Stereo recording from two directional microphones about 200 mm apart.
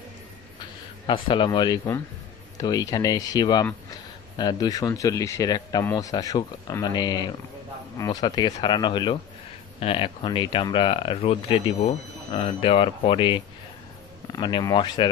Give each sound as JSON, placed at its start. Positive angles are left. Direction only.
{"t": 1.0, "sound": "speech", "side_deg": 25}